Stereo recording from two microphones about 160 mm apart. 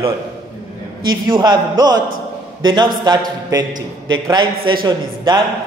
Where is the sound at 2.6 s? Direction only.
30° right (ahead or behind).